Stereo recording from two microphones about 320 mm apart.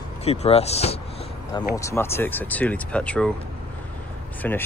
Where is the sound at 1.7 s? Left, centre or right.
Centre.